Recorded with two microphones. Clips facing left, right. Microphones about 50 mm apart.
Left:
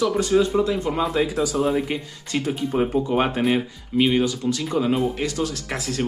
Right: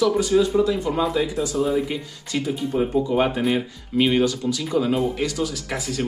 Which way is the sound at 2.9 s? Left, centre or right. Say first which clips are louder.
Right 1 dB; left.